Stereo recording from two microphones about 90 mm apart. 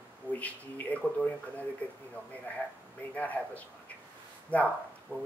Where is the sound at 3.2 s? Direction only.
15° left (ahead or behind).